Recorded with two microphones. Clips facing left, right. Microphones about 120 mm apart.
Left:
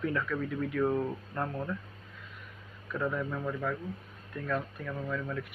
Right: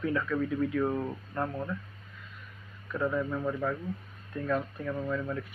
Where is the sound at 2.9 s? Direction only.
10° right (ahead or behind).